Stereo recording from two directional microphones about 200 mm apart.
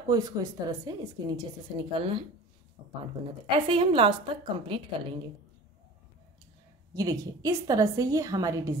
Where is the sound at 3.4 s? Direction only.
25° right (ahead or behind).